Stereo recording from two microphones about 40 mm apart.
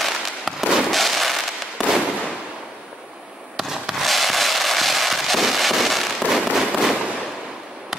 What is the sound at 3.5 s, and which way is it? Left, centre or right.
Fireworks, centre.